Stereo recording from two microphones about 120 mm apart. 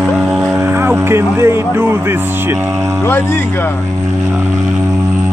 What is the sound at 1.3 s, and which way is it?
Speech, 20° right (ahead or behind).